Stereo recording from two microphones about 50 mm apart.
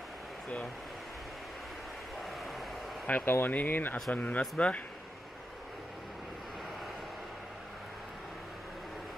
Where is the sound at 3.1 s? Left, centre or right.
Left.